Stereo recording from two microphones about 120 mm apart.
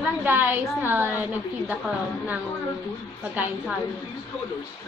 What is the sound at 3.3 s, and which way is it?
Speech, 15° right (ahead or behind).